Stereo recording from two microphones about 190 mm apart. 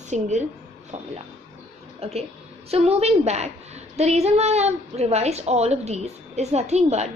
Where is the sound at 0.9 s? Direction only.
35° right (ahead or behind).